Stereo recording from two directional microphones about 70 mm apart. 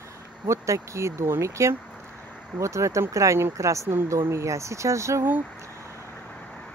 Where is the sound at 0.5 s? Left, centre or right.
Right.